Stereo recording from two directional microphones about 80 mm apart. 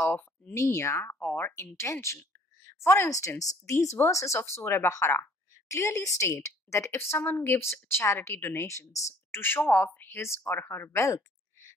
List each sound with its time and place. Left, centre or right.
0.0 s a sound: left
0.6 s speech: left
1.2 s speech: left
1.5 s a woman's voice: left
9.3 s speech: left